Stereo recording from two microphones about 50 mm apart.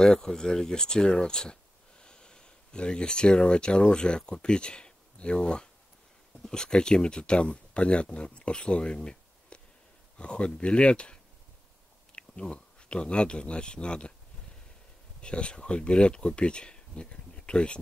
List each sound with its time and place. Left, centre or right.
0.0 s speech: centre
12.2 s speech: left
15.2 s speech: left